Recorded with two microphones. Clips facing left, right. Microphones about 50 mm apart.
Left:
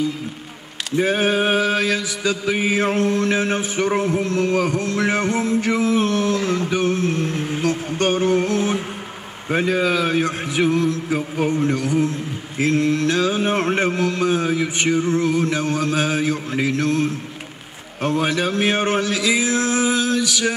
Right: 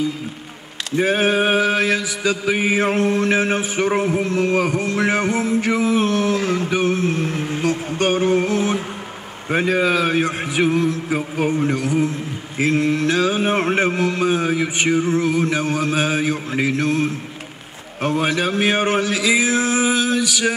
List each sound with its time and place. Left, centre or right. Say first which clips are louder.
0.9 s mantra: right 1 dB; centre
6.7 s a sound: right 1 dB; centre
9.5 s mantra: right 1 dB; centre